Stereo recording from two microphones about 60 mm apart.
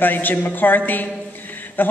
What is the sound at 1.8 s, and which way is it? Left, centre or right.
Mantra, left.